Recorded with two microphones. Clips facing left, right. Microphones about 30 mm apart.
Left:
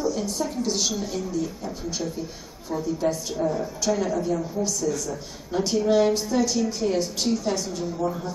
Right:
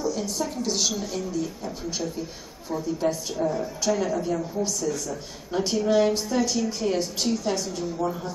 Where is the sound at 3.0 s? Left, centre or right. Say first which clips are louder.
Even; centre.